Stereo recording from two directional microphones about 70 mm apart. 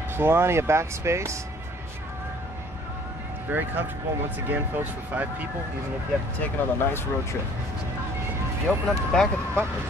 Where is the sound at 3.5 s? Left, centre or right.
Right.